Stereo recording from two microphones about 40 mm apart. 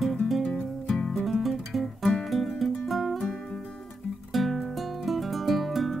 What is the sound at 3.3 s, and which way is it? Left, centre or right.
Music, left.